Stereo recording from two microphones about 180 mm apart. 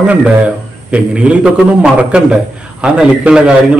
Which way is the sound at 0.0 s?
5° right (ahead or behind).